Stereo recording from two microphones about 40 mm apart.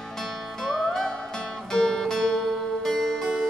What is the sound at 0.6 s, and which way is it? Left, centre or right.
Music, centre.